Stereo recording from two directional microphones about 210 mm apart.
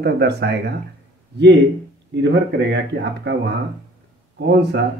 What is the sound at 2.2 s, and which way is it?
Speech, 55° right (ahead or behind).